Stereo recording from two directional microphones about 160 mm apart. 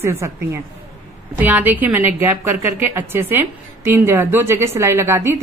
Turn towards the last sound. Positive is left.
turn(degrees=-15)  # may be behind; listen again after turning